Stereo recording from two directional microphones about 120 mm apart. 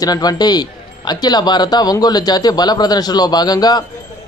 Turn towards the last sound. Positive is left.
turn(degrees=35)  # may be behind; listen again after turning